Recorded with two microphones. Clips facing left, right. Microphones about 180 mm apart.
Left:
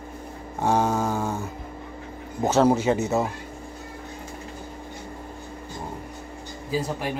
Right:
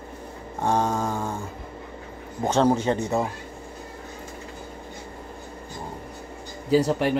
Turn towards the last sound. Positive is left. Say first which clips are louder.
# right 7 dB
turn(degrees=-65)  # may be behind; listen again after turning